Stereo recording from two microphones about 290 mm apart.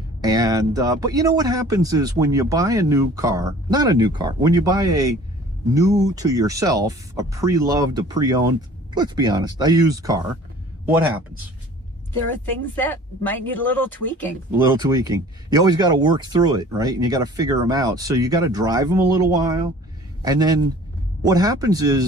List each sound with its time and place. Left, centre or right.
0.2 s speech: centre
12.7 s speech: centre
14.8 s speech: centre